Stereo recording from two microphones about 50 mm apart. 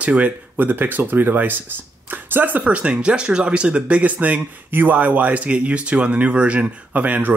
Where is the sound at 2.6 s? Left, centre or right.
Right.